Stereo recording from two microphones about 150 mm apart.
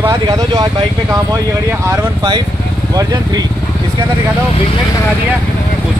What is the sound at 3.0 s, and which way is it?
Speech, 25° right (ahead or behind).